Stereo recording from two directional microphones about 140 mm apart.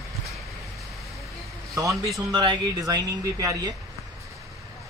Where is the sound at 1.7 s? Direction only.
20° right (ahead or behind).